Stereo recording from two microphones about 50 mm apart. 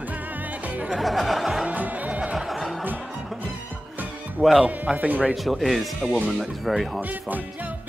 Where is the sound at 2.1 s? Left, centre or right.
Right.